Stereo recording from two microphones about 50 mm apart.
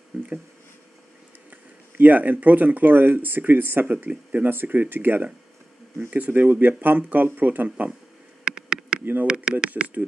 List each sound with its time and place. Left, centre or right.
0.1 s speech: right
1.5 s speech: right
4.5 s speech: right
8.5 s bee: centre
9.0 s speech: right
9.3 s speech: centre